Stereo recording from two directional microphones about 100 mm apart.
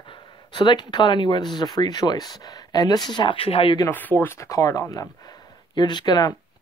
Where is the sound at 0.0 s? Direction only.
55° left (ahead or behind).